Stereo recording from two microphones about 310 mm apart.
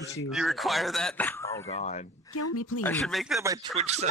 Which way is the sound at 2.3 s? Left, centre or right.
Left.